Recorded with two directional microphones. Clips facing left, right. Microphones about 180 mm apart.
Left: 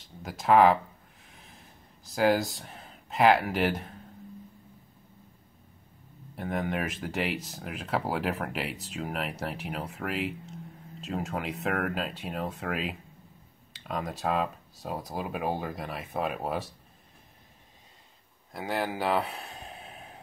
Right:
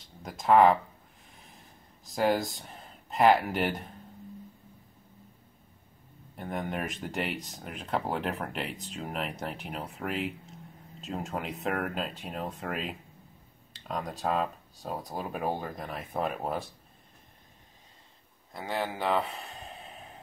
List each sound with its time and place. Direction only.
0.0 s speech: 5° left (ahead or behind)
2.0 s speech: centre (ahead or behind)
6.3 s speech: centre (ahead or behind)
18.5 s speech: 5° left (ahead or behind)